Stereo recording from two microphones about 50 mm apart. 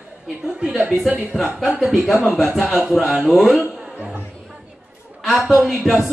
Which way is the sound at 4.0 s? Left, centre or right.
Right.